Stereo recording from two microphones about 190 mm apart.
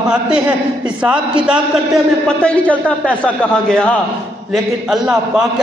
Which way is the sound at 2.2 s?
5° left (ahead or behind).